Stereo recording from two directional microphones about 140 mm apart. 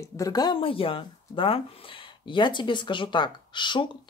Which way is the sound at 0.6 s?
40° left (ahead or behind).